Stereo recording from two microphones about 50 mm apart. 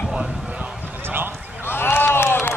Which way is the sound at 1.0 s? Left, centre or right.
Right.